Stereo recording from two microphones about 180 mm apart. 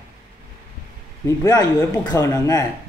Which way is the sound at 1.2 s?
20° left (ahead or behind).